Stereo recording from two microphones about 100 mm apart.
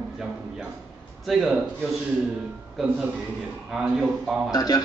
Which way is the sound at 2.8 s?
Centre (ahead or behind).